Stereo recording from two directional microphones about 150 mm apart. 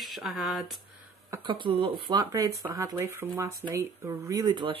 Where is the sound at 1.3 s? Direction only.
30° right (ahead or behind).